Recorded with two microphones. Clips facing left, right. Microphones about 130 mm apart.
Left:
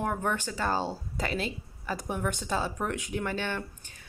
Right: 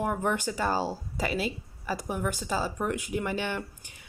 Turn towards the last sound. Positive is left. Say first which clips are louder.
# right 1 dB
turn(degrees=-10)  # may be behind; listen again after turning